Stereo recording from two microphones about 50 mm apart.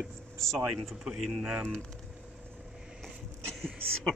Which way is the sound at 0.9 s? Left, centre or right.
Centre.